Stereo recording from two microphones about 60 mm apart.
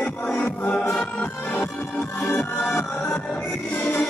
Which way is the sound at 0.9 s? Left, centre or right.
Left.